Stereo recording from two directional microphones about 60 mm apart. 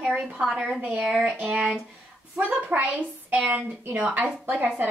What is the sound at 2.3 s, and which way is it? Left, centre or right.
A woman's voice, right.